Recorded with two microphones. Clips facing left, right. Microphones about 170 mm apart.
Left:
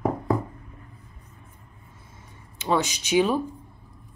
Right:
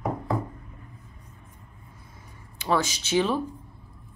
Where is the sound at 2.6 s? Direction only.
20° left (ahead or behind).